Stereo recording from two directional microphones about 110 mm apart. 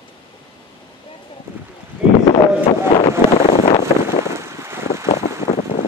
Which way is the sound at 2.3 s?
60° left (ahead or behind).